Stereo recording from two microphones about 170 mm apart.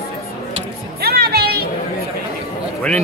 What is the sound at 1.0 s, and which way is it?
Music, 65° right (ahead or behind).